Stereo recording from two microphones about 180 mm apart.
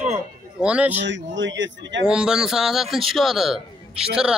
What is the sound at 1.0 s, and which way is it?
Speech, 90° right.